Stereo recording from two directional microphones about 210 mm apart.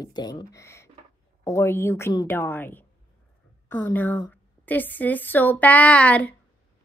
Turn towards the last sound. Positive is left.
turn(degrees=5)  # may be behind; listen again after turning